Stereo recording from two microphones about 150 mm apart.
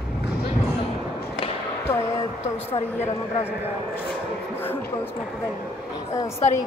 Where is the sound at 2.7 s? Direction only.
40° left (ahead or behind).